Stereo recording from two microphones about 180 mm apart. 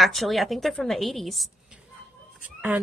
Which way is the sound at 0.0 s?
Centre (ahead or behind).